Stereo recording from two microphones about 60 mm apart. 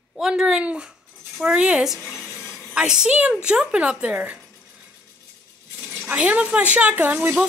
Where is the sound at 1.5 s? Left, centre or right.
Centre.